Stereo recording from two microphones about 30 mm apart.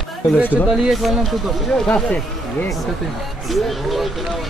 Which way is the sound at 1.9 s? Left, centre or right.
Left.